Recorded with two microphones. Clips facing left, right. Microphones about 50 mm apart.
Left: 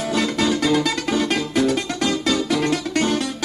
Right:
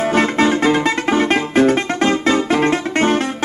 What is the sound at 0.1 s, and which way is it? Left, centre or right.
Music, right.